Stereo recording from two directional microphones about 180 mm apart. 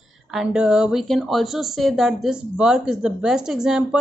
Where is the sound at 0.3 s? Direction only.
5° right (ahead or behind).